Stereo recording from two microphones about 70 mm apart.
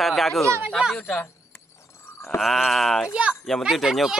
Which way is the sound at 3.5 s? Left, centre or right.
Centre.